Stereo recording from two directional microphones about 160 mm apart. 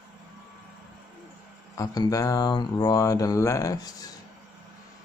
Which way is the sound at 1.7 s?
20° left (ahead or behind).